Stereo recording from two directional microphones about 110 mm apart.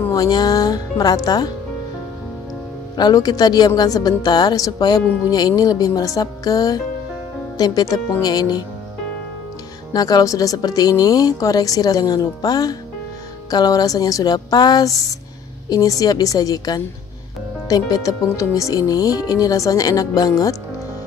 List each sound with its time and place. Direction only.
0.1 s speech: 35° left (ahead or behind)
3.0 s speech: 35° left (ahead or behind)
9.9 s speech: 35° left (ahead or behind)